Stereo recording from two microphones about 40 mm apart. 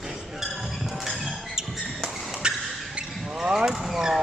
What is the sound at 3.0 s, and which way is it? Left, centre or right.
Vehicle, right.